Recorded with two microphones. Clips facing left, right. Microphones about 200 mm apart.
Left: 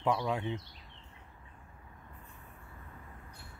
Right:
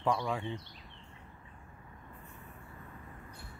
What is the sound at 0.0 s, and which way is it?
Speech, 5° left (ahead or behind).